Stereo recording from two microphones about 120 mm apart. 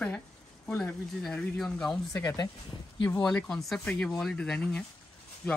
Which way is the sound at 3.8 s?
15° left (ahead or behind).